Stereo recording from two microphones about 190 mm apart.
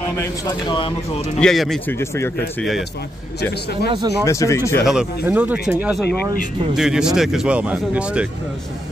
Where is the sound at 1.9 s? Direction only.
15° left (ahead or behind).